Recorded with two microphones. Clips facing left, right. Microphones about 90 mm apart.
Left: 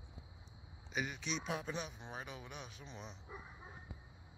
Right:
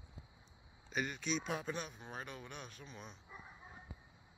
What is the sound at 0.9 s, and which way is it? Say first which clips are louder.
Speech: right 2 dB; 5° left (ahead or behind).